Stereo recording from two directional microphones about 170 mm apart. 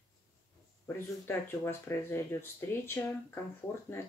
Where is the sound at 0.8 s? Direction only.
15° left (ahead or behind).